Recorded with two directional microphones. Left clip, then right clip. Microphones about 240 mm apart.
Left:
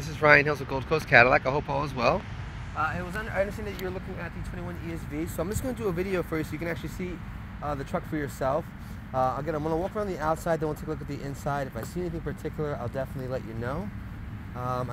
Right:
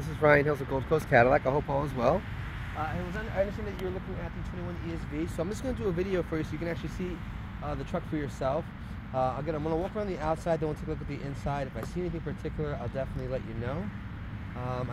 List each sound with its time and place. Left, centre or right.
0.0 s speech: centre
3.3 s speech: left